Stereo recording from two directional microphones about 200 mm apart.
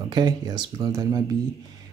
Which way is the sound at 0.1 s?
20° right (ahead or behind).